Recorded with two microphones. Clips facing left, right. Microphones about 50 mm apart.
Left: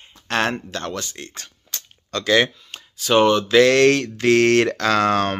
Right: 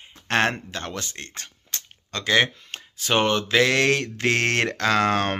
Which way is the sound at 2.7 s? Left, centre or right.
Right.